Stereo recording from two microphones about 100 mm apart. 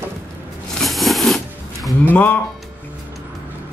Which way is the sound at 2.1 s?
15° left (ahead or behind).